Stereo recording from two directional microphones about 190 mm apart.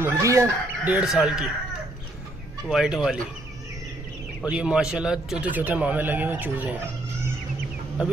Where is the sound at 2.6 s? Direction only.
Centre (ahead or behind).